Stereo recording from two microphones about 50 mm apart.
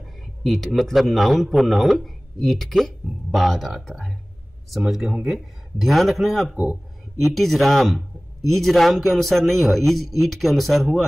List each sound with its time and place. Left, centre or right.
0.4 s a man's voice: centre